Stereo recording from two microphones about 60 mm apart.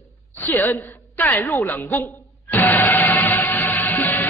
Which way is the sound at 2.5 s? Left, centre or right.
Left.